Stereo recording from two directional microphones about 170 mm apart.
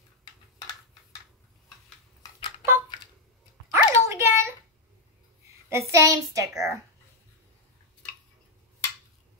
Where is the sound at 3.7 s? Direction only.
15° right (ahead or behind).